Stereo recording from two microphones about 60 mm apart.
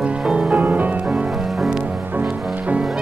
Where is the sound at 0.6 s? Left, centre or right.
Right.